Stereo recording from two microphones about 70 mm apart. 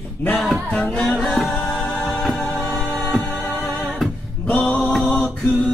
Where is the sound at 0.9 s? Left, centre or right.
Centre.